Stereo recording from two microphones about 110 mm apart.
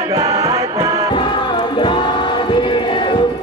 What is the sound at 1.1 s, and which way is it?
Music, 45° left (ahead or behind).